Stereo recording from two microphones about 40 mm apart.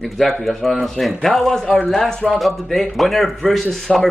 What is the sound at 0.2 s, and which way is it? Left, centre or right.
A man's voice, centre.